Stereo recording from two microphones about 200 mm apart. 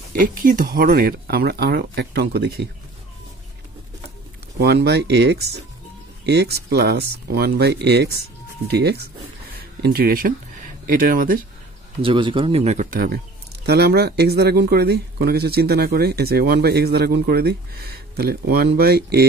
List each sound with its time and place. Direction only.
0.1 s speech: 45° right (ahead or behind)
4.6 s speech: 55° right (ahead or behind)
9.5 s a sound: 55° right (ahead or behind)
10.9 s speech: 45° right (ahead or behind)
12.0 s speech: 25° right (ahead or behind)
12.9 s speech: 50° right (ahead or behind)